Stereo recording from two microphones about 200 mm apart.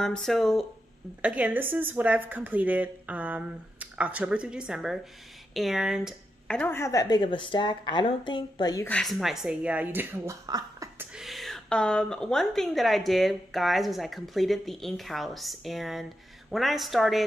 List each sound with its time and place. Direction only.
0.0 s a woman's voice: centre (ahead or behind); by 8.8 s 20° left (ahead or behind)
8.8 s a woman's voice: 5° left (ahead or behind); by 11.1 s 15° right (ahead or behind)
11.1 s a woman's voice: centre (ahead or behind)